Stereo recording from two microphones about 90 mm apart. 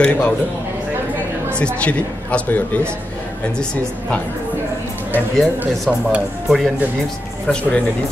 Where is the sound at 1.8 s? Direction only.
15° left (ahead or behind).